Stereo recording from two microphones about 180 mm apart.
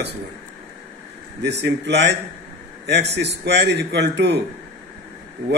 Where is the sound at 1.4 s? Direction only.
70° right (ahead or behind).